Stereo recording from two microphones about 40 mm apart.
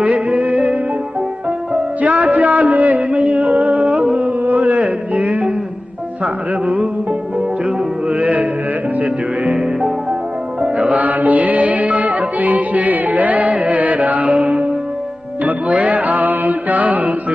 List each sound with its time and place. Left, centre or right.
0.0 s music: right
6.6 s music: right
9.6 s music: centre
10.6 s music: right